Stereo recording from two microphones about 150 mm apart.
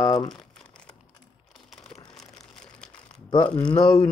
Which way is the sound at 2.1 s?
5° left (ahead or behind).